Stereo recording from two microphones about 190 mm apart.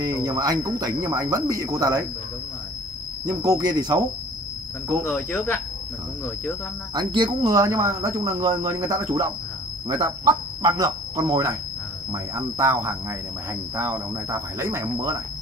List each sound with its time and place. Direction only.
0.0 s speech: 20° right (ahead or behind)
3.3 s speech: 20° right (ahead or behind)
6.9 s speech: 20° right (ahead or behind)